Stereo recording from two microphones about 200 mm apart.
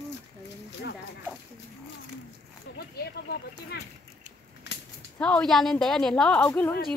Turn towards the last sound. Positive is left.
turn(degrees=10)  # may be behind; listen again after turning